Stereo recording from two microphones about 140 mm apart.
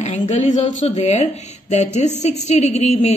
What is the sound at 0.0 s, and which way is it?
A woman's voice, 55° left (ahead or behind).